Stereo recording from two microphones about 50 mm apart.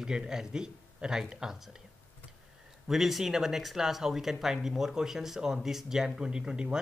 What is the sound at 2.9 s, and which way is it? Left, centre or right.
Speech, centre.